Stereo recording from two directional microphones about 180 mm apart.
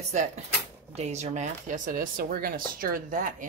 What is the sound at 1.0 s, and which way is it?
Speech, 40° right (ahead or behind).